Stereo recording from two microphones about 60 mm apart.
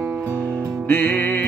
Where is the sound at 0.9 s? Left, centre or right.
Left.